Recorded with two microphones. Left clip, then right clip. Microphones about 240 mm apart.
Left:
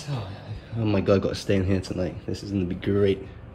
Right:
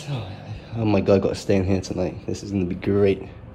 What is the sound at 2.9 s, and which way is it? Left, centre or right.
Speech, centre.